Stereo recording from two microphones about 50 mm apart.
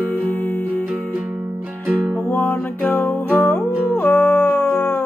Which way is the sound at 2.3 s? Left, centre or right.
Left.